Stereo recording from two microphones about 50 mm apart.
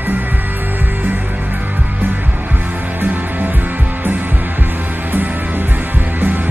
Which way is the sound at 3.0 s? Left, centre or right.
Right.